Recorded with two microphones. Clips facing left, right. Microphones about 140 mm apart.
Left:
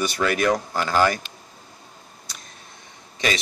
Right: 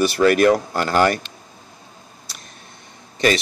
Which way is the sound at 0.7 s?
50° right (ahead or behind).